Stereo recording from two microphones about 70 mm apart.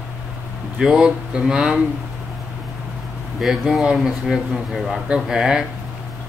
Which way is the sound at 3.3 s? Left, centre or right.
Centre.